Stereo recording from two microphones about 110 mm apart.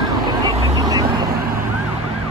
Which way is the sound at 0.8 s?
35° right (ahead or behind).